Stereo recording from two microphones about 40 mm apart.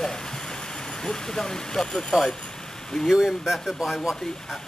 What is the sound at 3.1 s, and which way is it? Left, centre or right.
Speech, centre.